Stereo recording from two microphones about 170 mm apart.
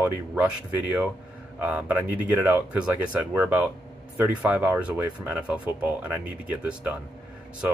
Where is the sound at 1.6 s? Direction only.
10° right (ahead or behind).